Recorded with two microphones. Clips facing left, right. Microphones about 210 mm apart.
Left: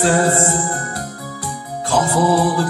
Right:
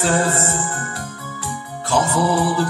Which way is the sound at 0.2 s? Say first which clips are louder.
Left 4 dB; 40° left (ahead or behind).